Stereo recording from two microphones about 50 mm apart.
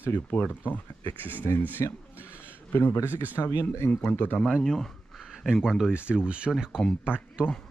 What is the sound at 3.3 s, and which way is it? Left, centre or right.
Speech, left.